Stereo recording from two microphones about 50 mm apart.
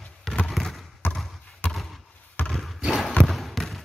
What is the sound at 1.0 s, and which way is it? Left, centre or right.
Basketball bounce, left.